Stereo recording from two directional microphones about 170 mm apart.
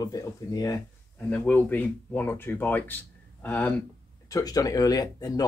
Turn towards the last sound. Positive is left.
turn(degrees=20)  # may be behind; listen again after turning